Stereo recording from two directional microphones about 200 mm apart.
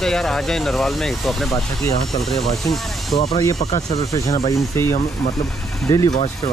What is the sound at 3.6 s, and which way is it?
Speech, 35° left (ahead or behind).